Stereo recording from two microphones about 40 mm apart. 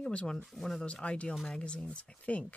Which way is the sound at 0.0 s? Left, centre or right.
Left.